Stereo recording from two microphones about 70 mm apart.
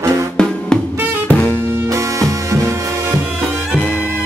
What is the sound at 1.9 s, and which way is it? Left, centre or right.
Music, right.